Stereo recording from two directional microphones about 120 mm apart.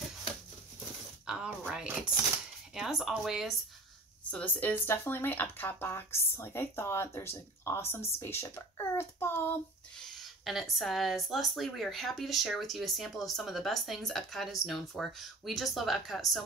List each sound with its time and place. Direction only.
1.2 s a sound: 5° right (ahead or behind)
1.6 s speech: 10° right (ahead or behind)
4.3 s speech: 10° left (ahead or behind)
9.9 s speech: centre (ahead or behind)